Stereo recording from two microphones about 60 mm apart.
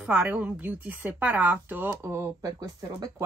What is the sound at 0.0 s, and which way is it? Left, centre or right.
Speech, right.